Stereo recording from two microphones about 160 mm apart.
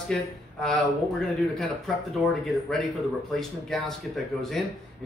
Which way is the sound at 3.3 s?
Centre (ahead or behind).